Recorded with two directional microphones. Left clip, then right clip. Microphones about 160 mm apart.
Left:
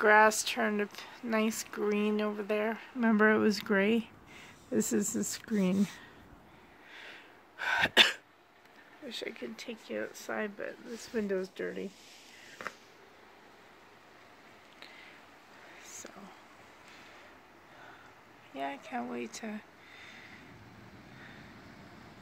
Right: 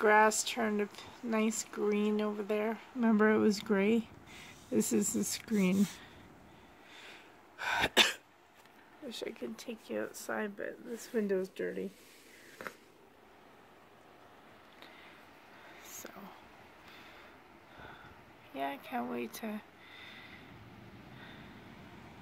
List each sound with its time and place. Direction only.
0.0 s speech: 5° left (ahead or behind)
6.9 s sneeze: 5° right (ahead or behind)
9.1 s speech: 5° right (ahead or behind)
11.1 s speech: 15° left (ahead or behind)
12.6 s a sound: 10° left (ahead or behind)
18.5 s speech: 5° right (ahead or behind)